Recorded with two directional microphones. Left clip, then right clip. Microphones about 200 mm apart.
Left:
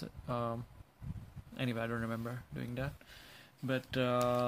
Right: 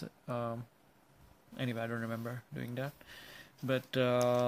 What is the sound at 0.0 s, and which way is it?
Speech, centre (ahead or behind).